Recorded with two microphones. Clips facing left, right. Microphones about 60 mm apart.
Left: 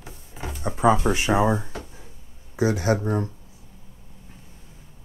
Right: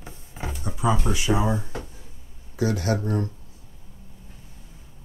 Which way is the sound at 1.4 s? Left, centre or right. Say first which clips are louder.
Left 3 dB; left.